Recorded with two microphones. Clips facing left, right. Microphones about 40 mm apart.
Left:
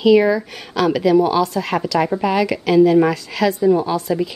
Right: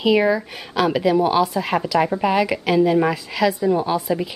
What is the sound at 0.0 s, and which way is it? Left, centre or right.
A woman's voice, centre.